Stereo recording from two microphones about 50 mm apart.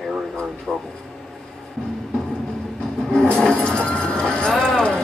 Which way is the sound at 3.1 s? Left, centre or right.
Centre.